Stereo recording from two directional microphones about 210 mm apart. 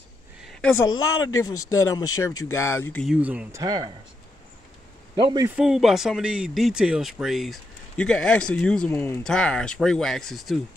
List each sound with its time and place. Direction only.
0.4 s a sound: centre (ahead or behind)
1.3 s speech: 15° left (ahead or behind)
2.9 s speech: 5° left (ahead or behind)
3.6 s a man's voice: 20° right (ahead or behind)
5.1 s a man's voice: 20° right (ahead or behind)
5.6 s speech: centre (ahead or behind)